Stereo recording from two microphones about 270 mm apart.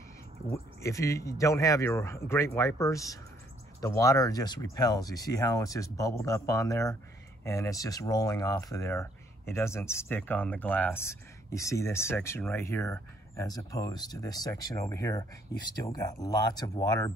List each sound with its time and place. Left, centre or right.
0.8 s speech: centre